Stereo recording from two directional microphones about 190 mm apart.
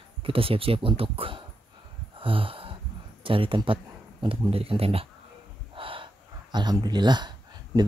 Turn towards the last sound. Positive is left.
turn(degrees=-20)  # may be behind; listen again after turning